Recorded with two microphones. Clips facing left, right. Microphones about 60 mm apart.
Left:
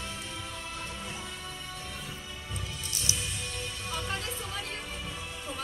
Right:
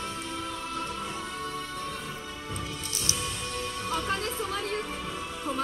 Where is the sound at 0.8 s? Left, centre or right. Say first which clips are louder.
Right 5 dB; right.